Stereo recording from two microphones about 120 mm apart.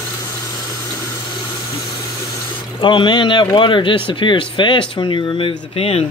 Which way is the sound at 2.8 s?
45° left (ahead or behind).